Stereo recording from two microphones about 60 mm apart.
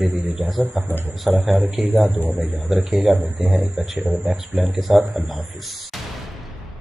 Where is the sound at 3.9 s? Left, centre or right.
Right.